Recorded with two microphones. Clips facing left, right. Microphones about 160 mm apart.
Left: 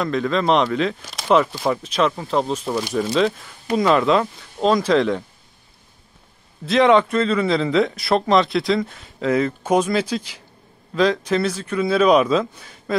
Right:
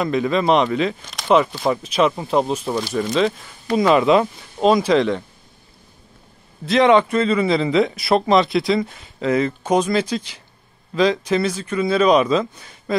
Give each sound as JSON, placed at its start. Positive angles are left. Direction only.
{"t": 0.0, "sound": "a man's voice", "side_deg": -10}
{"t": 2.9, "sound": "a man's voice", "side_deg": 0}
{"t": 6.6, "sound": "a man's voice", "side_deg": 0}